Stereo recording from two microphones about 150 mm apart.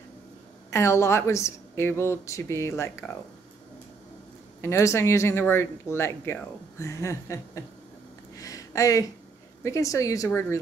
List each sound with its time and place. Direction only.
0.7 s a woman's voice: 20° left (ahead or behind)
3.0 s speech: 10° left (ahead or behind)
4.6 s speech: 20° left (ahead or behind)
8.4 s a sound: 25° left (ahead or behind)
9.6 s a woman's voice: 20° left (ahead or behind)